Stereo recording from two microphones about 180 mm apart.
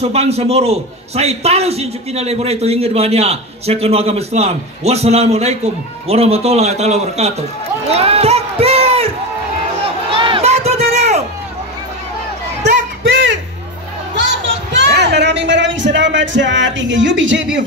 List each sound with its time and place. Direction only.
0.0 s a man's voice: 35° right (ahead or behind)
7.9 s run: 35° right (ahead or behind)
10.1 s crowd: 30° right (ahead or behind)
14.1 s music: 90° right